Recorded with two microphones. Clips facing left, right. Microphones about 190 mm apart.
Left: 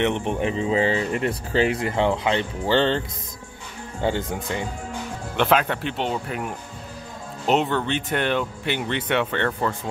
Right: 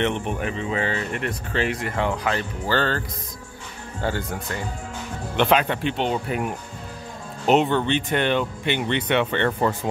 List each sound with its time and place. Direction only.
0.0 s speech: 20° left (ahead or behind)
4.0 s speech: 20° left (ahead or behind)
5.4 s speech: centre (ahead or behind)
6.2 s speech: 10° right (ahead or behind)
7.4 s speech: centre (ahead or behind)